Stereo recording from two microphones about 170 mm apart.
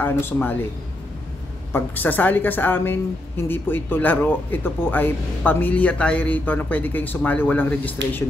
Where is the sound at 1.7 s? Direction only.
10° left (ahead or behind).